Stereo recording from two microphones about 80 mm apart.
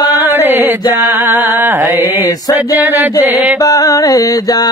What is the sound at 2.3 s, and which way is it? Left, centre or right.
Mantra, left.